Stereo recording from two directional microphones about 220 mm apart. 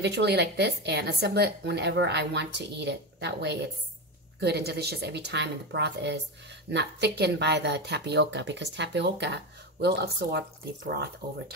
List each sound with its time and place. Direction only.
0.0 s speech: 50° right (ahead or behind)